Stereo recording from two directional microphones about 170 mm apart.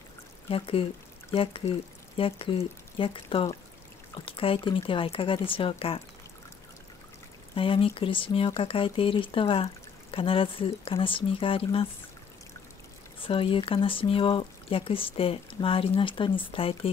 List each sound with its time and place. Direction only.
0.5 s speech: 35° left (ahead or behind)
7.5 s speech: 30° left (ahead or behind)
13.2 s speech: 30° left (ahead or behind)